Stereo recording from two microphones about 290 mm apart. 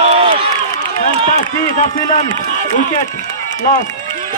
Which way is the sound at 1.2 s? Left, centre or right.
Left.